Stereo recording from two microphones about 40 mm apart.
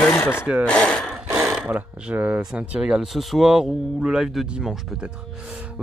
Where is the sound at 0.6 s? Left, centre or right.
Left.